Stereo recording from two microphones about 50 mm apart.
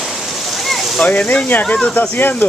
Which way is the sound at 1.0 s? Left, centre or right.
Left.